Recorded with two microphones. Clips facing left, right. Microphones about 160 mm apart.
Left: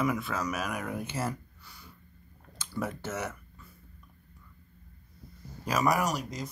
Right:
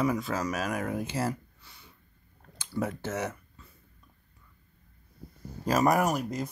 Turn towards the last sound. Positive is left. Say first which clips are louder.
# right 4 dB
turn(degrees=-55)  # may be behind; listen again after turning